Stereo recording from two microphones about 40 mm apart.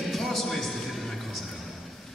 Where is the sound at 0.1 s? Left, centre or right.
Centre.